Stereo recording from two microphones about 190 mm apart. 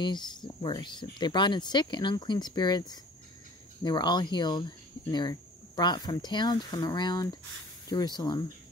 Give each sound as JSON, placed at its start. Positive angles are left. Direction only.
{"t": 0.0, "sound": "speech", "side_deg": 25}